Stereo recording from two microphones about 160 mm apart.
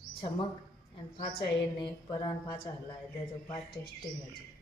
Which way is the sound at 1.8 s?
25° left (ahead or behind).